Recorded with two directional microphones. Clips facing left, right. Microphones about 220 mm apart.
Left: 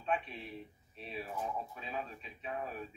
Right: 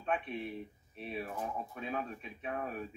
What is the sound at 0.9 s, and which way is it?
Speech, 55° right (ahead or behind).